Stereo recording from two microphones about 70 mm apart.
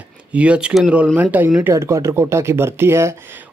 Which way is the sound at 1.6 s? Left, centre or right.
Right.